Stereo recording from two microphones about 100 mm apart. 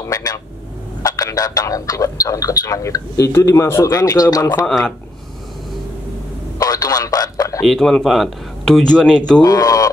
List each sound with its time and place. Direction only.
0.0 s vehicle: 40° left (ahead or behind)
1.0 s a man's voice: 40° left (ahead or behind)
3.9 s speech: 40° left (ahead or behind)
4.6 s speech: 5° left (ahead or behind)
6.6 s a sound: 40° left (ahead or behind)
7.6 s speech: 5° left (ahead or behind)
9.4 s speech: 40° left (ahead or behind)